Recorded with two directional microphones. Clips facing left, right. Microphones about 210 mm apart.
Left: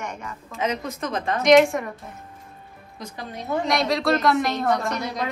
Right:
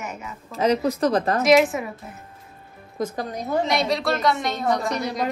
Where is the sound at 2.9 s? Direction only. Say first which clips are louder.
Right 8 dB; 45° right (ahead or behind).